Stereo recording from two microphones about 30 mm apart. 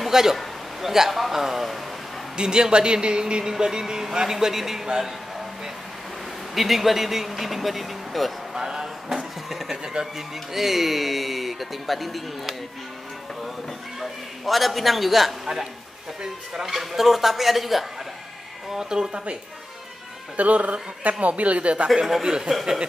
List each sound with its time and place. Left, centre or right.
0.1 s a man's voice: centre
2.3 s a man's voice: right
6.5 s speech: centre
8.5 s a sound: centre
10.1 s speech: centre
13.9 s a man's voice: centre
18.7 s a man's voice: right
20.3 s speech: right
22.2 s a man's voice: right